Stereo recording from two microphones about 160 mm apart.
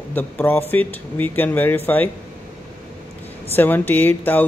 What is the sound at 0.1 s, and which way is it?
Speech, 10° left (ahead or behind).